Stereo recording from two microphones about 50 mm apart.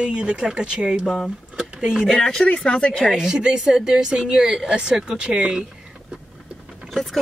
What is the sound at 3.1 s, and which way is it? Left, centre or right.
A woman's voice, centre.